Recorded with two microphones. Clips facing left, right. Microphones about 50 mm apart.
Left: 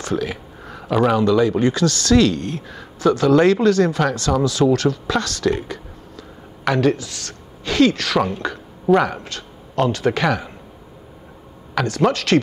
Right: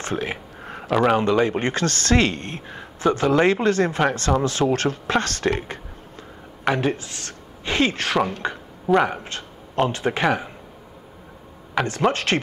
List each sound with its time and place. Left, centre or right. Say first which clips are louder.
0.0 s a sound: left 3 dB; right
0.8 s speech: left 1 dB; centre
1.1 s speech: left 3 dB; right
8.4 s a sound: left 1 dB; right
9.0 s speech: left 1 dB; right
11.7 s speech: left 2 dB; right